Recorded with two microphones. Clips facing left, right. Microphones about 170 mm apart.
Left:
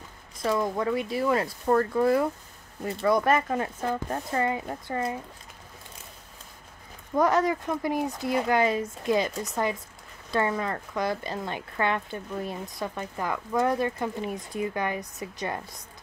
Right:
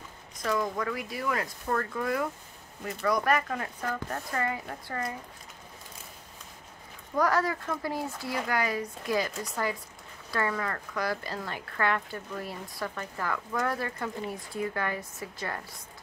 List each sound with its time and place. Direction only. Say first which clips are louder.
0.4 s speech: left 3 dB; 25° left (ahead or behind)
7.2 s speech: left 4 dB; 20° left (ahead or behind)